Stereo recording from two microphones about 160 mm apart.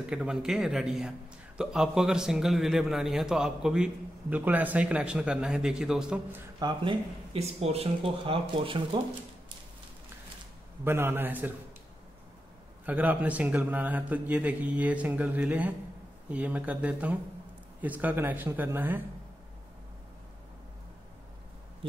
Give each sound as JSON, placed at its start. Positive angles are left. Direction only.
{"t": 0.0, "sound": "a man's voice", "side_deg": -5}
{"t": 6.6, "sound": "speech", "side_deg": -30}
{"t": 10.8, "sound": "speech", "side_deg": -15}
{"t": 12.8, "sound": "speech", "side_deg": -10}